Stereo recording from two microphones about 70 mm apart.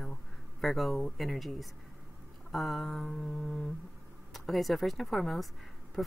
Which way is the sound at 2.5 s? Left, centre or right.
Centre.